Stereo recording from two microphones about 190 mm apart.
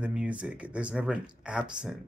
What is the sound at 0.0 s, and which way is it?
Speech, 5° right (ahead or behind).